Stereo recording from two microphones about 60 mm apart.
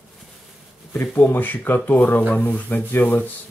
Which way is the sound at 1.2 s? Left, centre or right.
Left.